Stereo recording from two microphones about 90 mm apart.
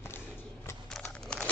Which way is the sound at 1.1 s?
10° left (ahead or behind).